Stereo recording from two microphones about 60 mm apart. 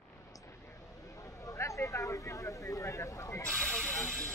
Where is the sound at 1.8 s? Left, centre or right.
Left.